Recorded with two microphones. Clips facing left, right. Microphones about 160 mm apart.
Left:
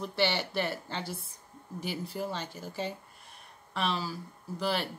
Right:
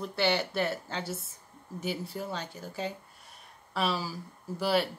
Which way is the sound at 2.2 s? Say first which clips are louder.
Left 2 dB; 5° left (ahead or behind).